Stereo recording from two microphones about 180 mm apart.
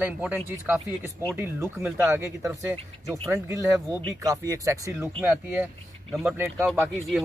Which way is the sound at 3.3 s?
15° right (ahead or behind).